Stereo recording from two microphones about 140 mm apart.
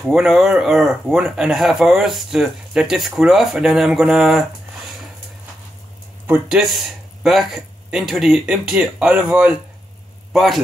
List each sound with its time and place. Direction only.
0.0 s speech: centre (ahead or behind)
6.2 s speech: 10° right (ahead or behind)
7.2 s speech: centre (ahead or behind)